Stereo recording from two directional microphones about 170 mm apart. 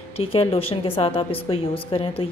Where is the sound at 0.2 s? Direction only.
35° left (ahead or behind).